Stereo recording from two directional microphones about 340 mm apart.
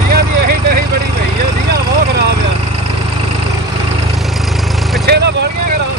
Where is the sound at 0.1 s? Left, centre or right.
Right.